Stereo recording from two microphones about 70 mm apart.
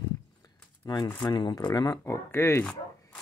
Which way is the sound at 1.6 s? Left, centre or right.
Left.